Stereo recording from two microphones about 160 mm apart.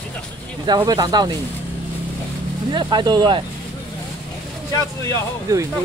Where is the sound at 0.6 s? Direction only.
25° right (ahead or behind).